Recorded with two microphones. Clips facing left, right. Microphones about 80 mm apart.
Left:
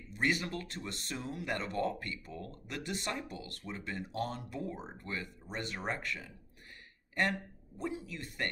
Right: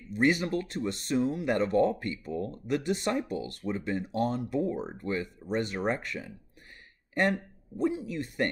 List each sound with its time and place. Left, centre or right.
0.2 s speech: right
7.8 s speech: right